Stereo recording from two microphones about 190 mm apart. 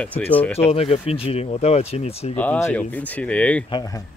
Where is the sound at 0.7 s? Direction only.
30° left (ahead or behind).